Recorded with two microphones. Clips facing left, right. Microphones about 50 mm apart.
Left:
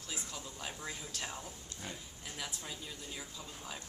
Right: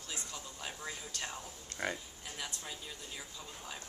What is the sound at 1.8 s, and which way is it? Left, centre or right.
Speech, right.